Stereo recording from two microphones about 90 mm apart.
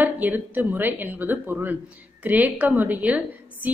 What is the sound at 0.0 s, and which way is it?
A woman's voice, 20° right (ahead or behind).